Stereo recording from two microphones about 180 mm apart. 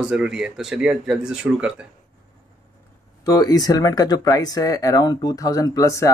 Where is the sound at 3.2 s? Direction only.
20° left (ahead or behind).